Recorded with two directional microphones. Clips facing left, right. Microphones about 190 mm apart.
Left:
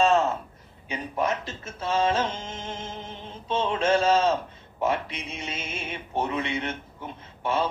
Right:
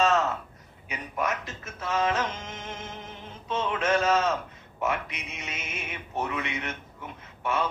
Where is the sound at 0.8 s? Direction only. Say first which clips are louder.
Left 3 dB; 30° left (ahead or behind).